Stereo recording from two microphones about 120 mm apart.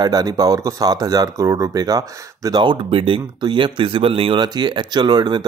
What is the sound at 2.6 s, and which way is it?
Speech, 45° right (ahead or behind).